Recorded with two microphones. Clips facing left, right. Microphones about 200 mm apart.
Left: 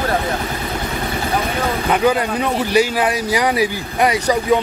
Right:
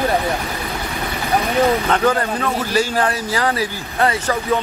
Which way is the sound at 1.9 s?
10° left (ahead or behind).